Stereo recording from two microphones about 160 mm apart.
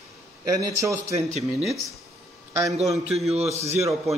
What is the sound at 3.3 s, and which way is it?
Speech, 40° right (ahead or behind).